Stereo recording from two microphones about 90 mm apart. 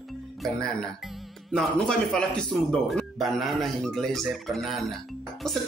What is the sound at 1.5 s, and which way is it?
Speech, 10° left (ahead or behind).